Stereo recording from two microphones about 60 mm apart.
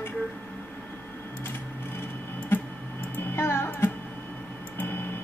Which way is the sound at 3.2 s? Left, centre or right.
Left.